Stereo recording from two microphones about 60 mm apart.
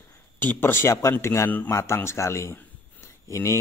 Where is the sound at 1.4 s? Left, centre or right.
Left.